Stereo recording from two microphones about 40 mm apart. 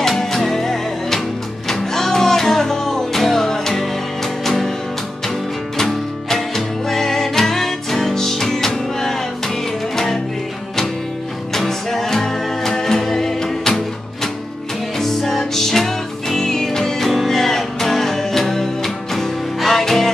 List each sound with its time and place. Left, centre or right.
0.0 s music: centre
5.8 s music: centre
11.5 s music: centre